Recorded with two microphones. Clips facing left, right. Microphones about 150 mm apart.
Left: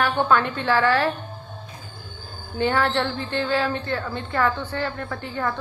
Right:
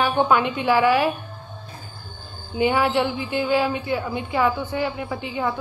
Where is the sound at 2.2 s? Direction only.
45° left (ahead or behind).